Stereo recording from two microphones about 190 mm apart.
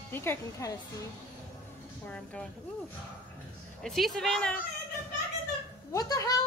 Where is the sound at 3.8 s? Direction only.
Centre (ahead or behind).